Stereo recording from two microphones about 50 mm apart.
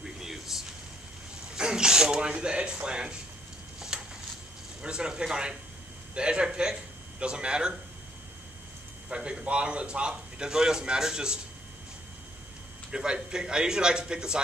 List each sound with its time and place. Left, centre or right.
0.0 s a sound: centre
1.5 s a man's voice: centre
3.9 s a sound: centre
4.8 s a man's voice: centre
9.1 s a man's voice: centre
12.9 s a man's voice: centre